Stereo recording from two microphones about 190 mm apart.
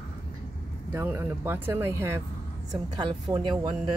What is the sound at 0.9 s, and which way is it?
Speech, 10° right (ahead or behind).